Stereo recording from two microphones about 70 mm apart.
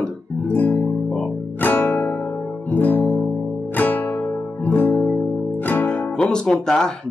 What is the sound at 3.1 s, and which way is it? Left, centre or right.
Music, centre.